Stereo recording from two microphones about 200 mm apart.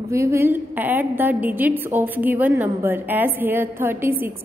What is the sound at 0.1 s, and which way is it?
A woman's voice, 15° right (ahead or behind).